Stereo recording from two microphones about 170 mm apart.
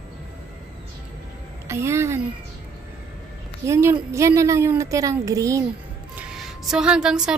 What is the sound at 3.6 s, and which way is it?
A woman's voice, 15° right (ahead or behind).